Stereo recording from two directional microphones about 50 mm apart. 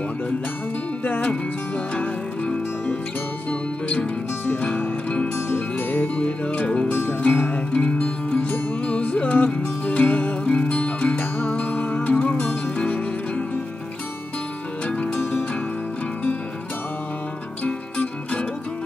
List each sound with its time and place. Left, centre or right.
1.0 s music: left
2.0 s music: left
14.9 s music: left
17.6 s music: left